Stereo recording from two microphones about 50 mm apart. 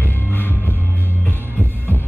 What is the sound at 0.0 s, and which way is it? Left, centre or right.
Music, left.